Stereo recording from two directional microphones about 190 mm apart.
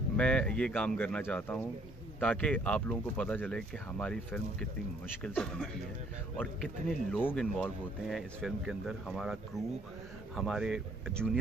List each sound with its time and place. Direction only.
0.2 s speech: 5° left (ahead or behind)